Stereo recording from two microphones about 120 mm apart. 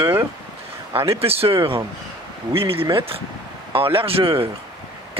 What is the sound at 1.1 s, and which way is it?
Speech, 55° right (ahead or behind).